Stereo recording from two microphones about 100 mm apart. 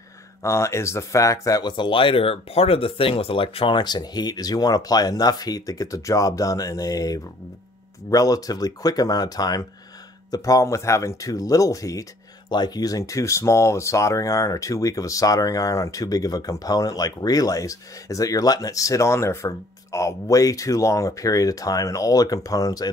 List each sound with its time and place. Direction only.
0.4 s speech: 30° left (ahead or behind)
12.4 s speech: 45° left (ahead or behind)